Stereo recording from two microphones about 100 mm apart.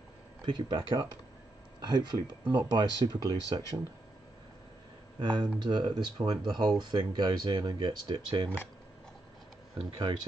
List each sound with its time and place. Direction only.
0.5 s speech: 45° right (ahead or behind)
5.2 s speech: 50° right (ahead or behind)
9.8 s speech: 50° right (ahead or behind)